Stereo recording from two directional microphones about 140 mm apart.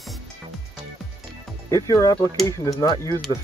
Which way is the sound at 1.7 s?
25° left (ahead or behind).